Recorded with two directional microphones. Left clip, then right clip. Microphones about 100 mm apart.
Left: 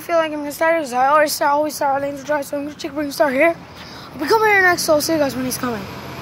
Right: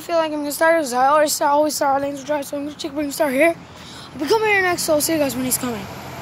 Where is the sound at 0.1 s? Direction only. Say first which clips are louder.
Left 2 dB; 20° right (ahead or behind).